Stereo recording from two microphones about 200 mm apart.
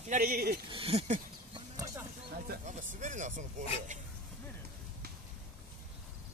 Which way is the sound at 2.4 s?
40° right (ahead or behind).